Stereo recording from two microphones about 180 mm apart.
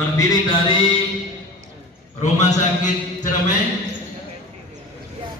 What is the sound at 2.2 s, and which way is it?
Speech, 40° left (ahead or behind).